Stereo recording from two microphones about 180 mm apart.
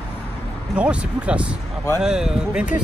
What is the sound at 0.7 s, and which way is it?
Speech, 5° right (ahead or behind).